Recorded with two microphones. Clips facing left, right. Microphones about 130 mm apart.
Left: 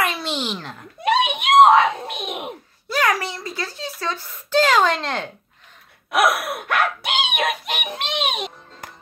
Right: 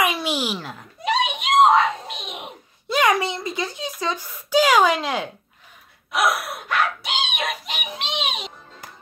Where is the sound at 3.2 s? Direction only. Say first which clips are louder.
Right 3 dB; 20° right (ahead or behind).